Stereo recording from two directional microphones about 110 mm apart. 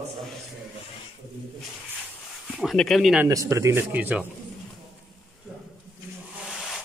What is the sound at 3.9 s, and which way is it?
Speech, 15° right (ahead or behind).